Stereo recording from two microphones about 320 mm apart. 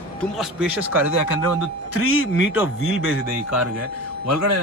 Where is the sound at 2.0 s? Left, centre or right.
Left.